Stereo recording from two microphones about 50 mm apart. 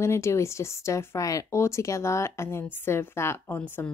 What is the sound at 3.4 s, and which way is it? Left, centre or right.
Speech, left.